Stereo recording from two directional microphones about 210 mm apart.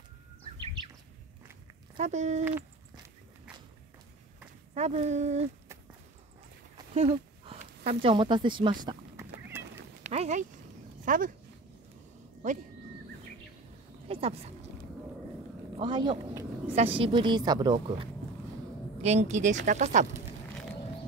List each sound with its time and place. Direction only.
2.0 s speech: 35° right (ahead or behind)
4.7 s speech: 30° right (ahead or behind)
6.9 s a sound: 30° right (ahead or behind)
8.0 s speech: 25° right (ahead or behind)
10.0 s speech: 30° right (ahead or behind)
14.0 s speech: 30° right (ahead or behind)
15.8 s speech: 20° right (ahead or behind)
19.0 s speech: 35° right (ahead or behind)